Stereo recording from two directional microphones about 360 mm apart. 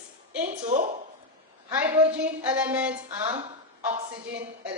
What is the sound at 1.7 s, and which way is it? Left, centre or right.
A woman's voice, centre.